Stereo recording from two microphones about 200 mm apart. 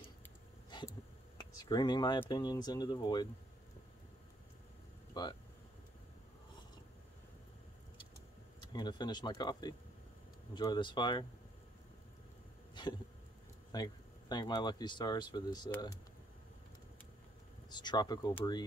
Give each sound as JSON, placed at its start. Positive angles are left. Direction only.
{"t": 0.7, "sound": "a sound", "side_deg": 25}
{"t": 2.2, "sound": "speech", "side_deg": 20}
{"t": 5.2, "sound": "speech", "side_deg": 20}
{"t": 8.7, "sound": "speech", "side_deg": 20}
{"t": 12.8, "sound": "hiccup", "side_deg": 20}
{"t": 13.7, "sound": "speech", "side_deg": 20}
{"t": 17.6, "sound": "speech", "side_deg": 20}